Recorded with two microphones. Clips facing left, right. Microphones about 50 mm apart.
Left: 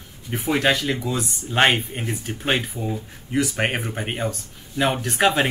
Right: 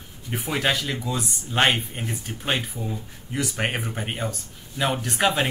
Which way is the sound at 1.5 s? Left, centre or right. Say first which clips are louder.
Left 3 dB; centre.